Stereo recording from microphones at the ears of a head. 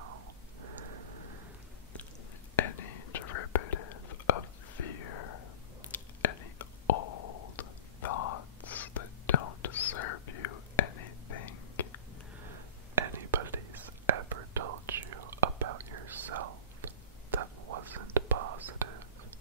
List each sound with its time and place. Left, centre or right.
0.0 s a sound: right
2.5 s whispering: left
12.5 s whispering: right